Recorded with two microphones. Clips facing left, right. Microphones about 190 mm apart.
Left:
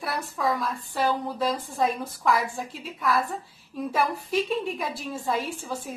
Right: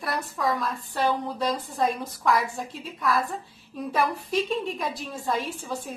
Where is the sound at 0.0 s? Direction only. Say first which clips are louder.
Even; centre (ahead or behind).